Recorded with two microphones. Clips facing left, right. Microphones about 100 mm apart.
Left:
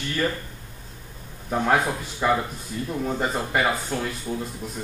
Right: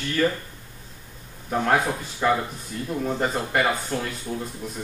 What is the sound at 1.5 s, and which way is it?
Speech, centre (ahead or behind).